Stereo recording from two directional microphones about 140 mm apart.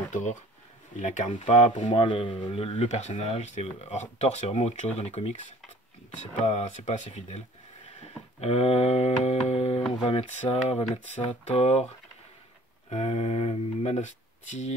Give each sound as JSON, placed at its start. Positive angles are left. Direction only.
{"t": 0.1, "sound": "speech", "side_deg": 65}
{"t": 6.4, "sound": "speech", "side_deg": 50}
{"t": 12.9, "sound": "speech", "side_deg": 50}